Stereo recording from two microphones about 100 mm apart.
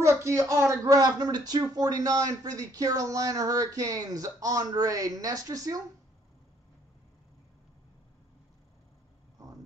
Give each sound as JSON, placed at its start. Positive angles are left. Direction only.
{"t": 0.0, "sound": "speech", "side_deg": -30}